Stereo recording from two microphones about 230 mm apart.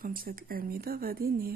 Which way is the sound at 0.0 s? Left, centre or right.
Right.